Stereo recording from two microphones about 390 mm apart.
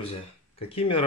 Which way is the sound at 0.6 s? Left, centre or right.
Centre.